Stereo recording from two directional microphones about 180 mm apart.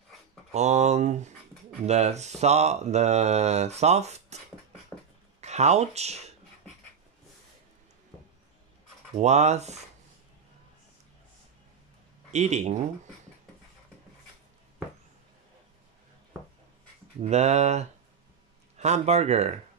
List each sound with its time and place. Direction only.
0.5 s speech: 40° right (ahead or behind)
5.4 s speech: 40° right (ahead or behind)
9.1 s speech: 40° right (ahead or behind)
12.3 s speech: 40° right (ahead or behind)
17.2 s speech: 40° right (ahead or behind)